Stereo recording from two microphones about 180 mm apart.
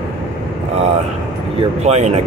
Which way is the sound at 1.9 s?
40° right (ahead or behind).